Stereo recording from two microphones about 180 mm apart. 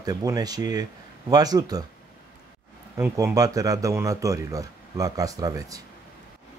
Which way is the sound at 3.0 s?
15° right (ahead or behind).